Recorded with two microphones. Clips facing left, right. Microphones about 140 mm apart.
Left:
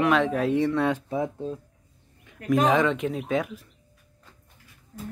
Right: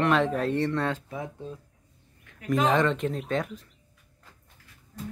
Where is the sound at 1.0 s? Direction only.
30° left (ahead or behind).